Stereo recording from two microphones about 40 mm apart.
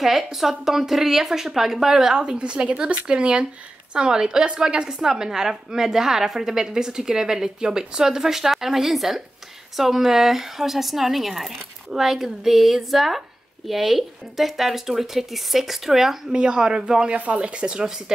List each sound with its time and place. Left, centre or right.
0.0 s a woman's voice: centre
2.3 s a woman's voice: right; by 16.2 s centre
16.3 s a woman's voice: right
17.1 s a woman's voice: right
17.8 s a woman's voice: centre